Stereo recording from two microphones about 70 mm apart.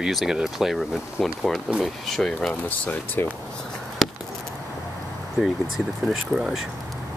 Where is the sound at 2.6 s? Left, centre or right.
Left.